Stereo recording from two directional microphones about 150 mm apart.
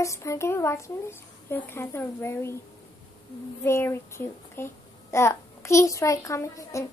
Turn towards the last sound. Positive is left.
turn(degrees=20)  # may be behind; listen again after turning